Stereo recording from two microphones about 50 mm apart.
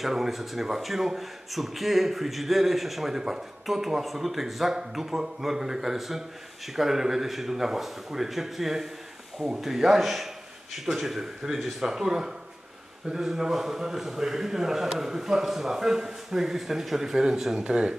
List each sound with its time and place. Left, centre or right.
0.0 s a man's voice: centre